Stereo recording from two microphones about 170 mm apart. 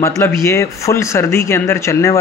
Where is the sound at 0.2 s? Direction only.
15° left (ahead or behind).